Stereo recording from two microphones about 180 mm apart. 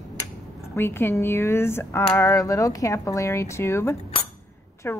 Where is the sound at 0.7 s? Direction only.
15° left (ahead or behind).